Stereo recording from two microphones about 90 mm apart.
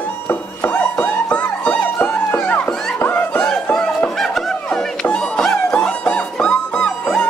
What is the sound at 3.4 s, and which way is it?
Music, 10° left (ahead or behind).